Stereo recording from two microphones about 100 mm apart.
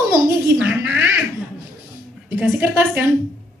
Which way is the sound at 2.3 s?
15° right (ahead or behind).